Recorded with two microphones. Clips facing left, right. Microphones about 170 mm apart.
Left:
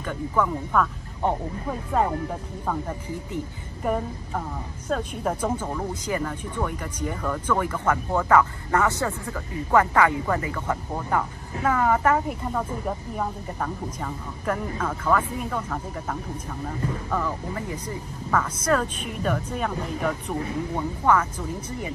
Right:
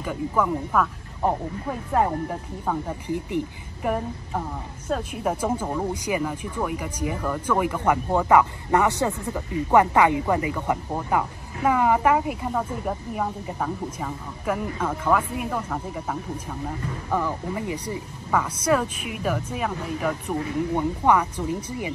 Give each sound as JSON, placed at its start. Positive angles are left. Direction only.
{"t": 0.0, "sound": "speech", "side_deg": -5}
{"t": 20.7, "sound": "speech", "side_deg": -15}